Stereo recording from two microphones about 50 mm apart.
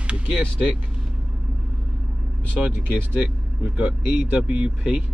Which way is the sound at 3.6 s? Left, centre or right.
Right.